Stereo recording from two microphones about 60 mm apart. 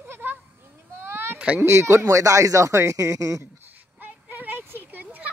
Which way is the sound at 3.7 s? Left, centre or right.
Right.